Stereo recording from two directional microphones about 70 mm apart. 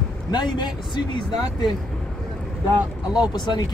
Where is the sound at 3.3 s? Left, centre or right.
Left.